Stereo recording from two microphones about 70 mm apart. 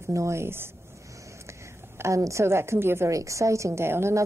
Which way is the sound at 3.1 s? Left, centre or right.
Right.